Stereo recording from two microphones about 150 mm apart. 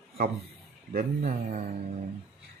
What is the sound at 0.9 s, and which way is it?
Speech, 70° right (ahead or behind).